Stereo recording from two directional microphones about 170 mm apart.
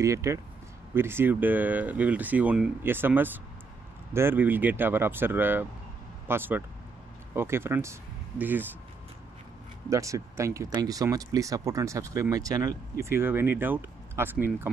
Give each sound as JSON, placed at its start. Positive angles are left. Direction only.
{"t": 0.0, "sound": "speech", "side_deg": -15}
{"t": 9.8, "sound": "speech", "side_deg": -20}